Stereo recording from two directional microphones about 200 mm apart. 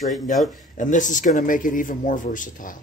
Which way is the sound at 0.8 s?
40° left (ahead or behind).